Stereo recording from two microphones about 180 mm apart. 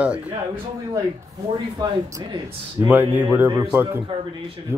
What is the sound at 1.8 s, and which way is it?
Speech, 20° right (ahead or behind).